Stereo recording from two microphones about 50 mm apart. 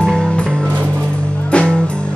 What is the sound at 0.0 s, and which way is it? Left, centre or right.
Music, centre.